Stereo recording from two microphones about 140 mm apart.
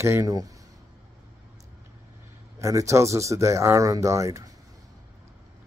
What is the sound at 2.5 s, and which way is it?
Speech, 20° right (ahead or behind).